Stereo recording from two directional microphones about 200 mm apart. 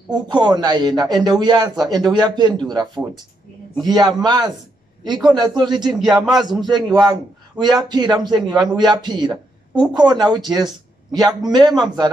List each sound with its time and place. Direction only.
0.1 s a man's voice: 20° right (ahead or behind)
3.8 s a man's voice: 20° right (ahead or behind)
5.9 s speech: centre (ahead or behind)
6.7 s a man's voice: 20° right (ahead or behind)